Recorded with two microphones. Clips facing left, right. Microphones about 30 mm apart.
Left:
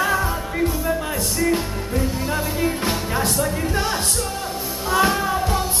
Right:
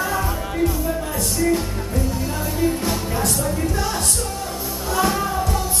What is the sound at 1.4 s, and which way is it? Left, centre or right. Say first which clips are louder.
Music: right 1 dB; left.